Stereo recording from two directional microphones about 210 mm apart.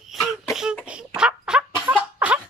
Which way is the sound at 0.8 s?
5° right (ahead or behind).